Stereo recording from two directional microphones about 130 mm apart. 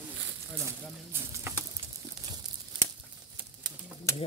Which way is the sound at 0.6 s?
20° right (ahead or behind).